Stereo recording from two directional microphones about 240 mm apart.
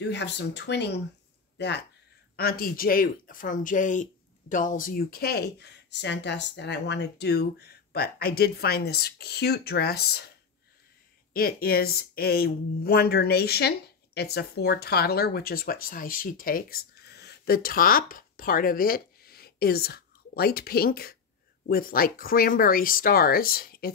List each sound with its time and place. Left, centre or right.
0.0 s speech: left
11.3 s speech: left